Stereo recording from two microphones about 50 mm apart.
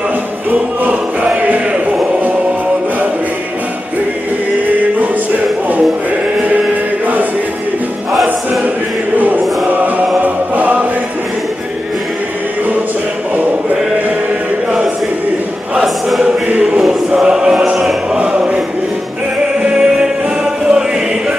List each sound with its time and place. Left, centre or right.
1.2 s a sound: right
9.7 s choir: right
10.2 s chant: right
16.4 s choir: right
16.8 s choir: centre
19.6 s music: centre